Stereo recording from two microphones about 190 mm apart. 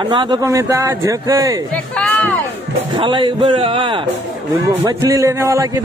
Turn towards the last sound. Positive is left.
turn(degrees=-15)  # may be behind; listen again after turning